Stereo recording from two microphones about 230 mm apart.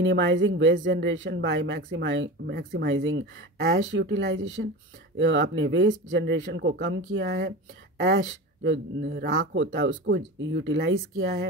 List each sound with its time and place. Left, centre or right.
0.0 s speech: right
4.6 s speech: right
5.1 s speech: right
9.2 s speech: right
9.6 s speech: right